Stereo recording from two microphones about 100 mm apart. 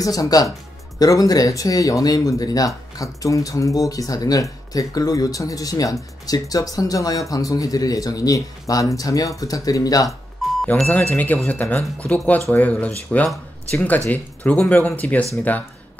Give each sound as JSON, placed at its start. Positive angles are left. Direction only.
{"t": 0.0, "sound": "speech", "side_deg": 35}
{"t": 10.0, "sound": "music", "side_deg": 0}
{"t": 11.3, "sound": "speech", "side_deg": 15}